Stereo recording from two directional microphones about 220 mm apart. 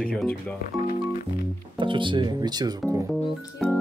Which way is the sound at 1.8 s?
20° right (ahead or behind).